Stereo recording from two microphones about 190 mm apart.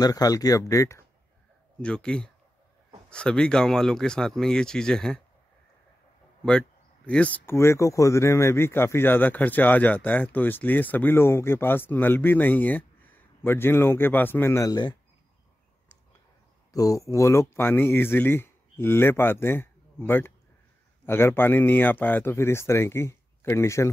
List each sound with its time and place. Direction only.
0.0 s speech: 20° left (ahead or behind)
1.8 s speech: 5° left (ahead or behind)
7.1 s speech: 5° left (ahead or behind)
16.7 s speech: 20° left (ahead or behind)